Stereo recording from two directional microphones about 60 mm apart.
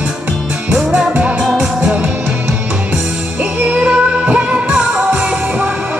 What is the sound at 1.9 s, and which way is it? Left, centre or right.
Music, right.